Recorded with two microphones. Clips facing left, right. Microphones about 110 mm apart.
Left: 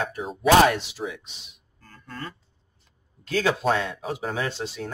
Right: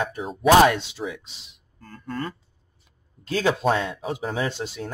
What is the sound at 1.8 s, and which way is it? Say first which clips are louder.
Speech: right 7 dB; 50° right (ahead or behind).